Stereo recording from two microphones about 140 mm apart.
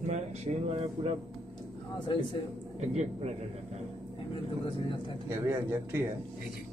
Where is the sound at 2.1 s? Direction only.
35° left (ahead or behind).